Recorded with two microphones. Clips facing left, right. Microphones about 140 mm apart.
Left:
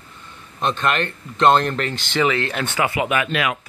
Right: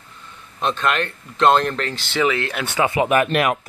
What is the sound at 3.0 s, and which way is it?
Speech, 45° right (ahead or behind).